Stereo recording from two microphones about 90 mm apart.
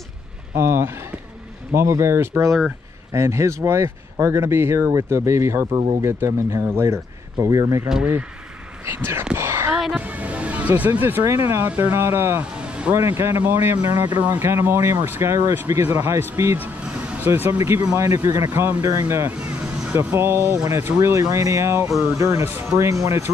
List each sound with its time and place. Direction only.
0.6 s speech: 25° right (ahead or behind)
5.7 s speech: 65° right (ahead or behind)
6.0 s speech: 30° right (ahead or behind)
8.8 s speech: 25° right (ahead or behind)
9.8 s music: 5° right (ahead or behind)
10.0 s speech: 15° right (ahead or behind)
12.5 s music: 10° right (ahead or behind)
12.9 s speech: 30° right (ahead or behind)
13.8 s speech: 50° right (ahead or behind)
14.2 s speech: 20° right (ahead or behind)
16.5 s vehicle: 15° right (ahead or behind)
17.3 s speech: 30° right (ahead or behind)